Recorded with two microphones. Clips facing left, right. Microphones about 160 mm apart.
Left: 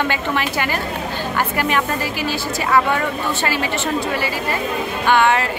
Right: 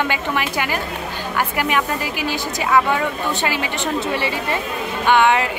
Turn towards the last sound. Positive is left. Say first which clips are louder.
# even
turn(degrees=-15)  # may be behind; listen again after turning